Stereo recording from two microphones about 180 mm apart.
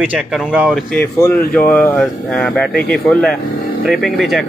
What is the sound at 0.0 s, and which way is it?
Speech, 5° right (ahead or behind).